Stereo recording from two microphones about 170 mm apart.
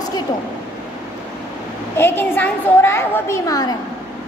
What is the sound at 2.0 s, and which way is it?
A woman's voice, 15° left (ahead or behind).